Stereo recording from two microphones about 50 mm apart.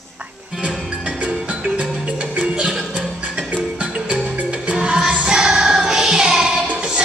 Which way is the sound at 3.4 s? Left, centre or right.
Centre.